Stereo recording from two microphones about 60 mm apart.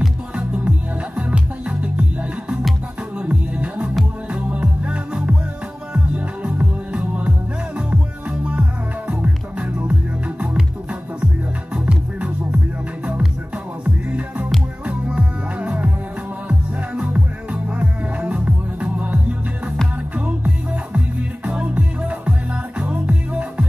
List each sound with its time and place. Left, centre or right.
0.4 s music: centre
3.2 s music: right
11.7 s music: centre
13.8 s music: centre
20.2 s music: right